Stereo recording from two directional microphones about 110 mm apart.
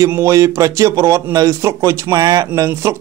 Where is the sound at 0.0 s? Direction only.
25° right (ahead or behind).